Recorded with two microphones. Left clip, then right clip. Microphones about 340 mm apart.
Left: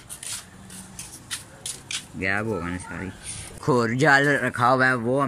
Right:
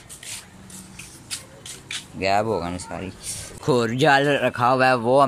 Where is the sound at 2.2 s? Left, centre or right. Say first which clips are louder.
Right 5 dB; centre.